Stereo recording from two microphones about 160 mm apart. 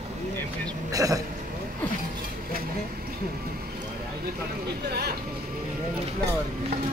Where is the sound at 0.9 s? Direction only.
20° right (ahead or behind).